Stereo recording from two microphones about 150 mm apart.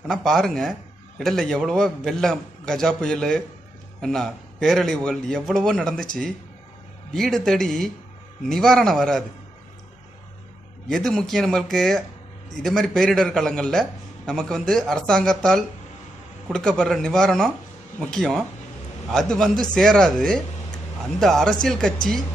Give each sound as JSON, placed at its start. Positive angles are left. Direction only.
{"t": 0.1, "sound": "a man's voice", "side_deg": 5}
{"t": 7.1, "sound": "a man's voice", "side_deg": 5}
{"t": 10.9, "sound": "a man's voice", "side_deg": 5}